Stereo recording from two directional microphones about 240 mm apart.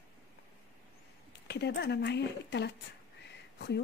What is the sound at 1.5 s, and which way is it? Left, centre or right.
Speech, left.